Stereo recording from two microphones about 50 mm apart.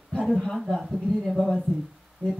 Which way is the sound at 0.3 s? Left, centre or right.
Centre.